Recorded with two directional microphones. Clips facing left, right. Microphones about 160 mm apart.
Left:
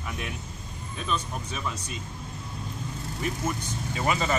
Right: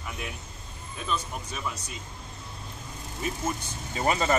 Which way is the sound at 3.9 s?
35° right (ahead or behind).